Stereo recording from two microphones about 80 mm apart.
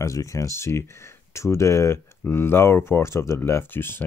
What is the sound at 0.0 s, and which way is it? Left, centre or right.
Speech, left.